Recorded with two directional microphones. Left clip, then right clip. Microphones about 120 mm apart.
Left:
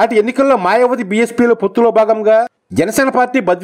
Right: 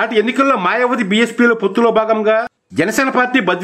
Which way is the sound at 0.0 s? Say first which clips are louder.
Left 2 dB; 35° left (ahead or behind).